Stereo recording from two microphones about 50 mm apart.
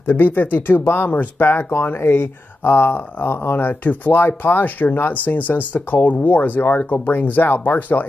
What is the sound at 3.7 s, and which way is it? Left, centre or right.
Speech, left.